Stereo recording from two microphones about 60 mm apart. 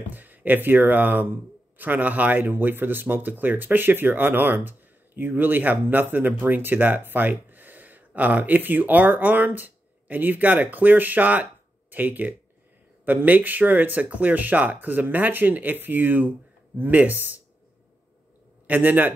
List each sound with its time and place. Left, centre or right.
0.1 s speech: right
18.7 s speech: right